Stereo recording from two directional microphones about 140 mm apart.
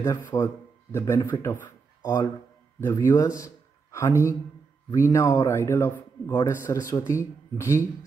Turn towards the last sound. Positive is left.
turn(degrees=20)  # may be behind; listen again after turning